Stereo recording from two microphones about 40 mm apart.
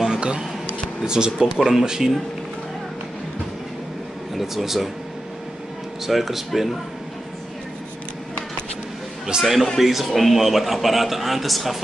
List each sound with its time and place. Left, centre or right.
0.2 s speech: right
4.4 s a man's voice: centre
6.0 s a man's voice: centre
9.4 s a man's voice: centre